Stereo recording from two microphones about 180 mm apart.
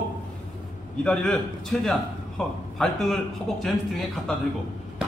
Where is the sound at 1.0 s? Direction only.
5° left (ahead or behind).